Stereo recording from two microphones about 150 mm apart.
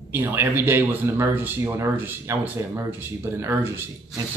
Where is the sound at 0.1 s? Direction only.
15° right (ahead or behind).